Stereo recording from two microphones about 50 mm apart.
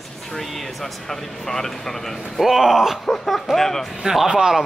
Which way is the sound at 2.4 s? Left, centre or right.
Centre.